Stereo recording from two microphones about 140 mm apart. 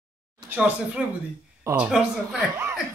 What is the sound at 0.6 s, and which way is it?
Speech, 5° right (ahead or behind).